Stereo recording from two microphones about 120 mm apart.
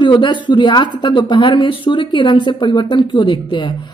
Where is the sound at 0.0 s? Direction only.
40° left (ahead or behind).